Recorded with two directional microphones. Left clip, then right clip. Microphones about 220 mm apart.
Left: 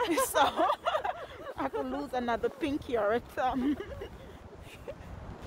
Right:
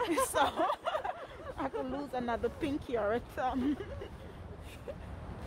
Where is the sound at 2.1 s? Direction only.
35° left (ahead or behind).